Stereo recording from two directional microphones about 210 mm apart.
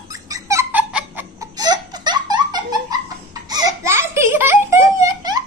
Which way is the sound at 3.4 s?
15° right (ahead or behind).